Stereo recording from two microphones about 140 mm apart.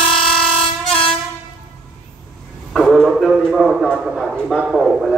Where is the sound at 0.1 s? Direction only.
5° left (ahead or behind).